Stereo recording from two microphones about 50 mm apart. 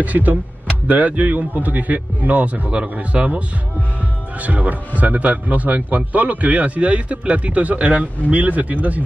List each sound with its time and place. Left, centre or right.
0.0 s speech: right